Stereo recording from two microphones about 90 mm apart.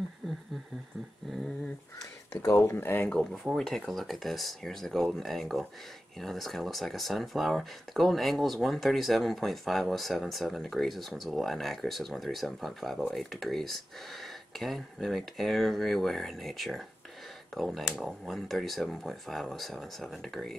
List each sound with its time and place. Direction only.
0.2 s a sound: centre (ahead or behind)
2.4 s speech: 30° left (ahead or behind)
3.1 s speech: 5° left (ahead or behind)